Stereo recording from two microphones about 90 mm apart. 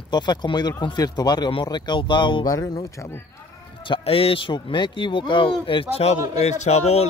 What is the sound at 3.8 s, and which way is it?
Speech, 80° left.